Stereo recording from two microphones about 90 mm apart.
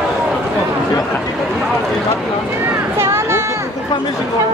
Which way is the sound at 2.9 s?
30° right (ahead or behind).